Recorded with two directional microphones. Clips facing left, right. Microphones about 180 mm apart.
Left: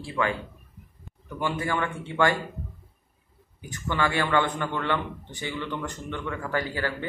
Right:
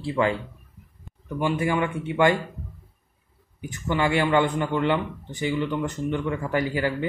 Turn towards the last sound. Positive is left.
turn(degrees=-15)  # may be behind; listen again after turning